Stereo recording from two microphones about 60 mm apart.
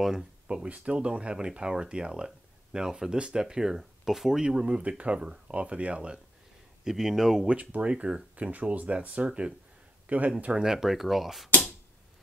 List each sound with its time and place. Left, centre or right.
0.0 s speech: centre
6.8 s speech: centre
7.4 s speech: right
10.4 s speech: centre